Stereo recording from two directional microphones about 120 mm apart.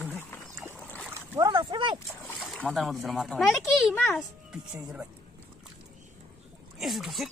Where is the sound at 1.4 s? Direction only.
40° right (ahead or behind).